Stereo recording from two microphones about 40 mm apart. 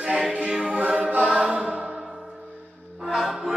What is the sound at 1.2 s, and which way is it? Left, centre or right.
Music, right.